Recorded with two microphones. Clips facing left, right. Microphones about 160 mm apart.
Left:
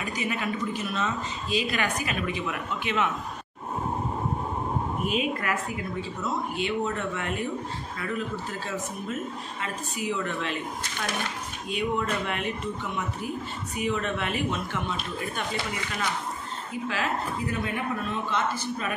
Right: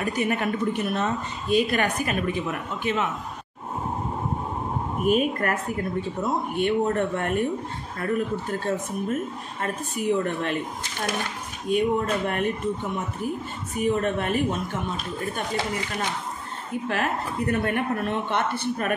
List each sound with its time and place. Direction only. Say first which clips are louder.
0.0 s a woman's voice: right 5 dB; 55° right (ahead or behind)
5.0 s a woman's voice: right 8 dB; 50° right (ahead or behind)
11.7 s a woman's voice: right 5 dB; 45° right (ahead or behind)
16.8 s speech: right 2 dB; 55° right (ahead or behind)